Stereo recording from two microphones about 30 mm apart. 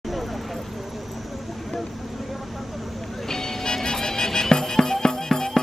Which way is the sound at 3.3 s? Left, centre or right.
Centre.